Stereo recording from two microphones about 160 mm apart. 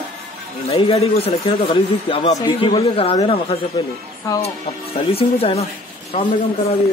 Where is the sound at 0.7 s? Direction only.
40° left (ahead or behind).